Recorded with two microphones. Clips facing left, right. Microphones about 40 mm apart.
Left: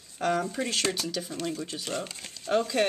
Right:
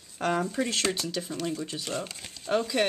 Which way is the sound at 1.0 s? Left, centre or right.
Centre.